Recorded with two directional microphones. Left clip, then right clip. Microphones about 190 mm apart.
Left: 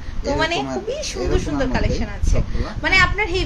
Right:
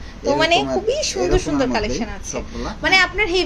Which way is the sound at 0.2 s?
20° right (ahead or behind).